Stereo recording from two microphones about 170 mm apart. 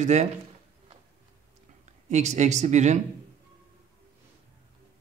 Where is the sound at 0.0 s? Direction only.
40° right (ahead or behind).